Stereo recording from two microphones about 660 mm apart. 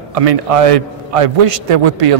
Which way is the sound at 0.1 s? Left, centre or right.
Right.